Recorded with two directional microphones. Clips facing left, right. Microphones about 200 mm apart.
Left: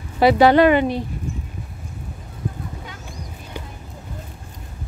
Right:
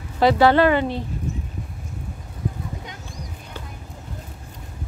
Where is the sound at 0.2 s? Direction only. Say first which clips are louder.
Left 3 dB; 15° left (ahead or behind).